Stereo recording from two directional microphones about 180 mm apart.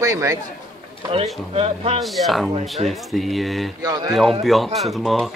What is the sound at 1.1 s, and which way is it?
Speech, 30° right (ahead or behind).